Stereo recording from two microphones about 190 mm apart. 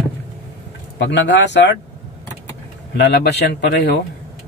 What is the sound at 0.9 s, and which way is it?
Speech, 65° left (ahead or behind).